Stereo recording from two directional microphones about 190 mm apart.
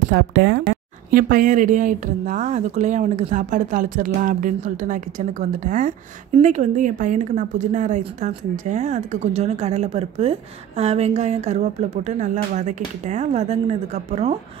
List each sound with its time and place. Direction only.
0.1 s speech: 55° right (ahead or behind)
1.1 s a woman's voice: 45° right (ahead or behind)